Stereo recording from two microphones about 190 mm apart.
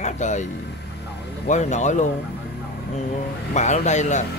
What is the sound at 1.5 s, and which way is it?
Speech, 40° left (ahead or behind).